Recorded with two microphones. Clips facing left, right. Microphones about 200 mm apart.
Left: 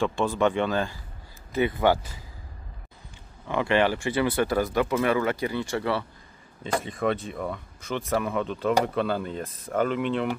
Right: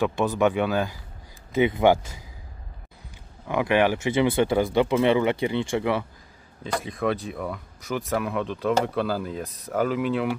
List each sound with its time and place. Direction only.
0.0 s speech: 10° right (ahead or behind)
3.4 s speech: 10° right (ahead or behind)
6.6 s speech: centre (ahead or behind)